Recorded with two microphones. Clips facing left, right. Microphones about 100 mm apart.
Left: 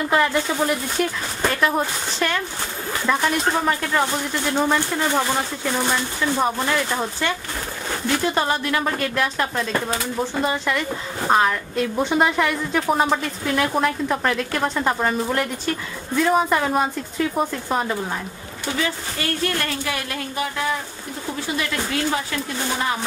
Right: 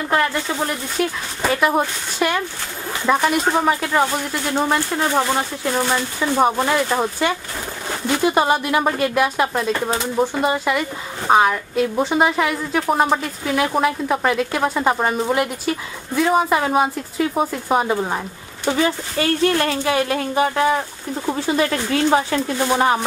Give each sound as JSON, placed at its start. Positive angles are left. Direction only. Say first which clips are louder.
{"t": 0.1, "sound": "a woman's voice", "louder": "right 1 dB", "side_deg": 0}
{"t": 17.8, "sound": "speech", "louder": "right 5 dB", "side_deg": -25}
{"t": 19.6, "sound": "speech", "louder": "right 7 dB", "side_deg": -30}